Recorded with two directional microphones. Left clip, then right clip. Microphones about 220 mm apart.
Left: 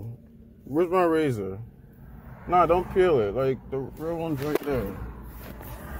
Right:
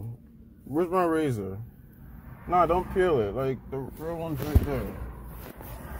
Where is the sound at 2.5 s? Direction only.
Centre (ahead or behind).